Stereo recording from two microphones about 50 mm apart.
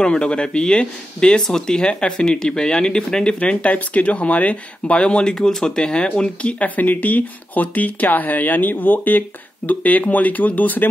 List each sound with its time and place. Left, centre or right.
0.0 s speech: centre
6.6 s speech: left